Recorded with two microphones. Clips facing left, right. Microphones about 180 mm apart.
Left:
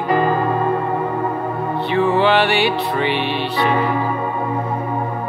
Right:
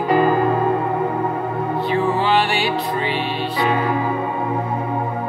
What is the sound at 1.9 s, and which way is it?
Music, 65° left (ahead or behind).